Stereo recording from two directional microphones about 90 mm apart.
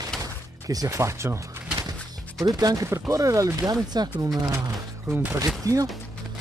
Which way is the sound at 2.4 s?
45° right (ahead or behind).